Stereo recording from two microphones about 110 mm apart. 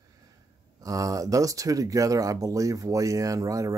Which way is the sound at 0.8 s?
30° right (ahead or behind).